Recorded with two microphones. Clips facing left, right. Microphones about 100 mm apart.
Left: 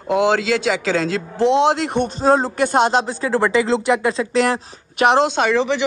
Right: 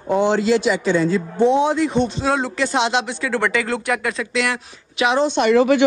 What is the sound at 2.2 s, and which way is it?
Speech, 40° left (ahead or behind).